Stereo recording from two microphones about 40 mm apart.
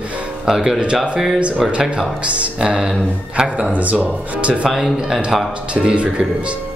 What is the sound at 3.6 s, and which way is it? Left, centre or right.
Speech, right.